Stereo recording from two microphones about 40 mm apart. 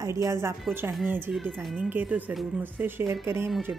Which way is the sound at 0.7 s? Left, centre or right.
Right.